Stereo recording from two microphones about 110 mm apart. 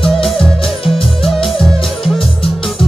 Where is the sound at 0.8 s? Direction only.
55° left (ahead or behind).